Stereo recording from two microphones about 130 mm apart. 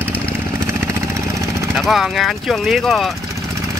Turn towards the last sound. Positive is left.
turn(degrees=0)  # may be behind; listen again after turning